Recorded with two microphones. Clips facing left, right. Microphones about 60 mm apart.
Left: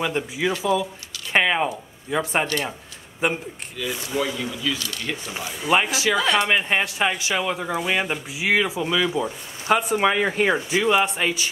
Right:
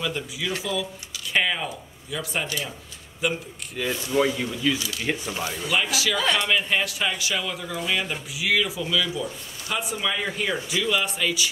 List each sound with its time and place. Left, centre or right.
0.0 s speech: left
3.8 s speech: right
5.7 s speech: left
6.1 s speech: centre
6.4 s speech: left